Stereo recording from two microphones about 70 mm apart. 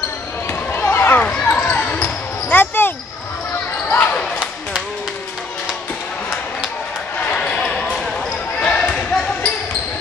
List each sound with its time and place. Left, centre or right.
0.5 s a sound: left
1.5 s basketball bounce: left
3.9 s basketball bounce: left
7.2 s basketball bounce: centre
7.6 s basketball bounce: centre